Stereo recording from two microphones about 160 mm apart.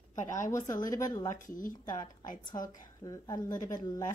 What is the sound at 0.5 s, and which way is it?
Speech, 20° left (ahead or behind).